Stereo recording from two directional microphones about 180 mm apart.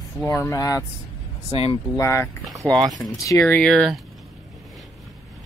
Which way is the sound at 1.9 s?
15° left (ahead or behind).